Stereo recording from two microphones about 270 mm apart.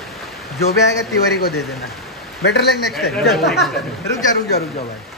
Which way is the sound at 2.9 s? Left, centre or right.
Centre.